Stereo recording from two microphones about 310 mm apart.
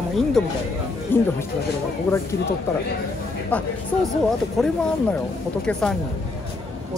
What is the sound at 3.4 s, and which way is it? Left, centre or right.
Speech, centre.